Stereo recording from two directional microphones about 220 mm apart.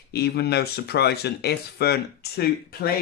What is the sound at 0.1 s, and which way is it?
Speech, 45° left (ahead or behind).